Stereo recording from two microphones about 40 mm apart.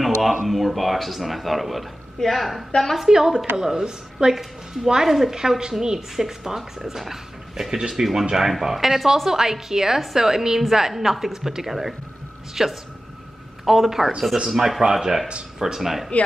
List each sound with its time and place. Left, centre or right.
0.0 s a sound: centre
0.5 s speech: centre
2.1 s a woman's voice: centre
3.1 s a woman's voice: centre